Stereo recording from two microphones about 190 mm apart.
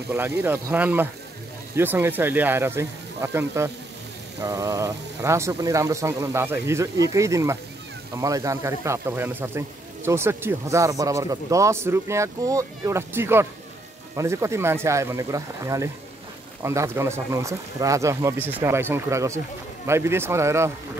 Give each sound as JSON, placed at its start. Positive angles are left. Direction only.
{"t": 0.1, "sound": "speech", "side_deg": -10}